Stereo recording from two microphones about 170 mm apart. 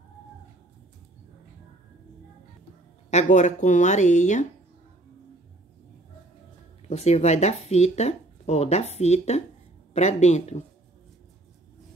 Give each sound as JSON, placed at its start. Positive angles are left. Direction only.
{"t": 3.1, "sound": "speech", "side_deg": 45}
{"t": 6.9, "sound": "speech", "side_deg": 40}